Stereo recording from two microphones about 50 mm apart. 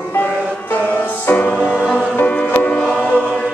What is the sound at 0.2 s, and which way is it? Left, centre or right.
Music, left.